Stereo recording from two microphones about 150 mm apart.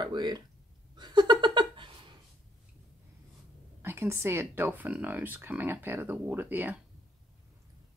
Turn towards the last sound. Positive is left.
turn(degrees=-10)  # may be behind; listen again after turning